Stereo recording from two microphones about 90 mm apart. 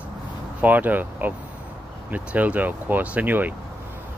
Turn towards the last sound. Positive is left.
turn(degrees=-20)  # may be behind; listen again after turning